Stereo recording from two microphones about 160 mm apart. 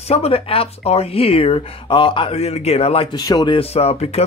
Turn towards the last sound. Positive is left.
turn(degrees=40)  # may be behind; listen again after turning